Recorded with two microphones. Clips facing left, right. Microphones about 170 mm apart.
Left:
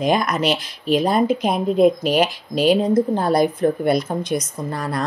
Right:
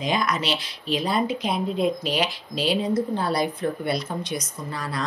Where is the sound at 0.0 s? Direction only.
50° left (ahead or behind).